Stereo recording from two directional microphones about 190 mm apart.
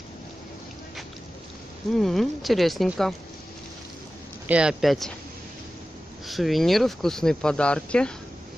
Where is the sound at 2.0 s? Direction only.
Centre (ahead or behind).